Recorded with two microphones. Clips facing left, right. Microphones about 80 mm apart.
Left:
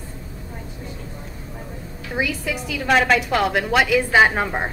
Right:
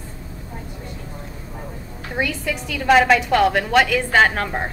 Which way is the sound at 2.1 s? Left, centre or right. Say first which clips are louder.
Even; centre.